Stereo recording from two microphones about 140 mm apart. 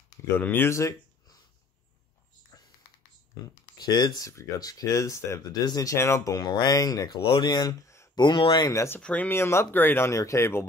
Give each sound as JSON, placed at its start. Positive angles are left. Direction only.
{"t": 0.4, "sound": "speech", "side_deg": 15}
{"t": 3.7, "sound": "speech", "side_deg": 30}
{"t": 7.2, "sound": "speech", "side_deg": 35}
{"t": 8.2, "sound": "speech", "side_deg": 35}